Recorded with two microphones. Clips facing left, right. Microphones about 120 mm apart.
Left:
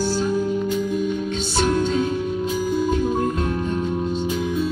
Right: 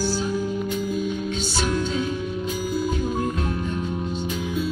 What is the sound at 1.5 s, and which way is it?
Music, 50° left (ahead or behind).